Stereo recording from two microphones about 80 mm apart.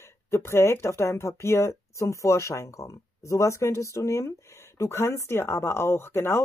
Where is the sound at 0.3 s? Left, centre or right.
Left.